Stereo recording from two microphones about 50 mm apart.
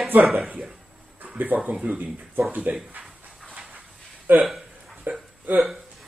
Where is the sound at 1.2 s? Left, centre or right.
Right.